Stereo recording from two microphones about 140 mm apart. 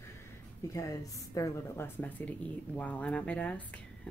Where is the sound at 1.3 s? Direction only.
20° left (ahead or behind).